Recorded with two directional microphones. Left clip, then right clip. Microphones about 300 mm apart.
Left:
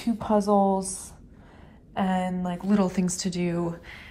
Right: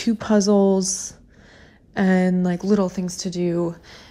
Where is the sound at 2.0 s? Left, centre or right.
Right.